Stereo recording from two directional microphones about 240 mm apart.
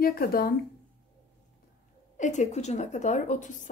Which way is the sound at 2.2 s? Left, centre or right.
Left.